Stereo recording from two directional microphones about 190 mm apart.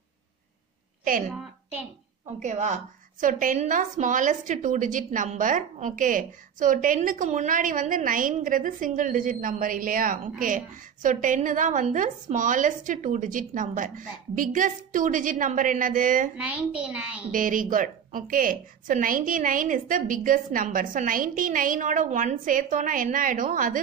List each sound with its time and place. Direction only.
1.1 s a woman's voice: 45° right (ahead or behind)
2.2 s a woman's voice: 40° right (ahead or behind)
16.3 s a child's voice: 5° right (ahead or behind)
17.3 s a woman's voice: 45° right (ahead or behind)